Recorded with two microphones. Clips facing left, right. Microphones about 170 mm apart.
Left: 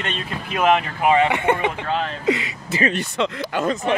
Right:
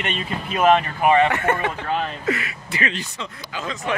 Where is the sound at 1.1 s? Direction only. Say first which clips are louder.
Even; 15° left (ahead or behind).